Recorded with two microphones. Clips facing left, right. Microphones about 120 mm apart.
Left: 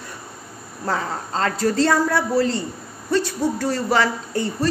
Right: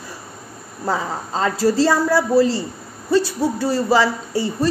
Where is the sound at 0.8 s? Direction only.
10° right (ahead or behind).